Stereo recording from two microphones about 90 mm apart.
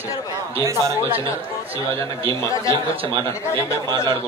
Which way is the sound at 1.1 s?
90° right.